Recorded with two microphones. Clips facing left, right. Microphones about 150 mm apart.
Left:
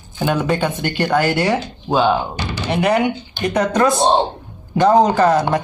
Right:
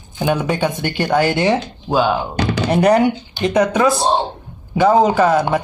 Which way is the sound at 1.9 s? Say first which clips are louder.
Left 1 dB; 5° right (ahead or behind).